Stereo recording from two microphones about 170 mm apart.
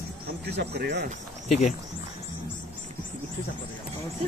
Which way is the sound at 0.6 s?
75° right (ahead or behind).